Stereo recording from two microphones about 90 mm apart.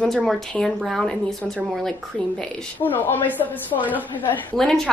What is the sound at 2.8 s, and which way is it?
A woman's voice, 20° left (ahead or behind).